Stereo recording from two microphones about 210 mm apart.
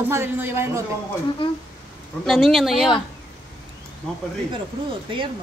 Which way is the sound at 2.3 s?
Centre (ahead or behind).